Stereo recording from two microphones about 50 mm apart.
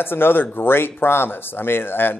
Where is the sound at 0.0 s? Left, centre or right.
Left.